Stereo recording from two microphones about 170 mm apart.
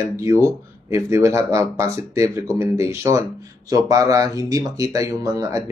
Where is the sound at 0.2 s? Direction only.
15° right (ahead or behind).